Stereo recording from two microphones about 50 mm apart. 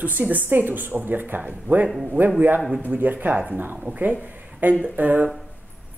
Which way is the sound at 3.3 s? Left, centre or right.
Right.